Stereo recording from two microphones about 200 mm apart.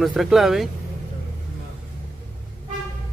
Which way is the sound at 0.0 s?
Centre (ahead or behind).